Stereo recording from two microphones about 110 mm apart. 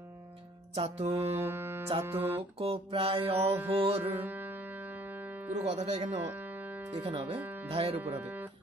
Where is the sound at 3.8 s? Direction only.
60° right (ahead or behind).